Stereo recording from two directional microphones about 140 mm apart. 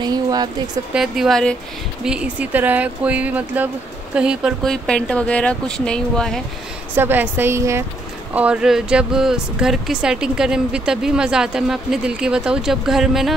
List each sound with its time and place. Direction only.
0.0 s speech: 30° right (ahead or behind)
0.9 s speech: 5° right (ahead or behind)
2.0 s speech: 10° right (ahead or behind)
4.6 s speech: 5° left (ahead or behind)
7.0 s speech: 15° right (ahead or behind)